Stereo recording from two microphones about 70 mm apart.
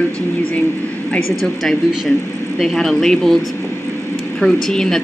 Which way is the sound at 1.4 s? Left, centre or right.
Centre.